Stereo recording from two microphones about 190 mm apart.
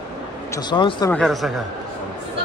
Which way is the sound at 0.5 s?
25° left (ahead or behind).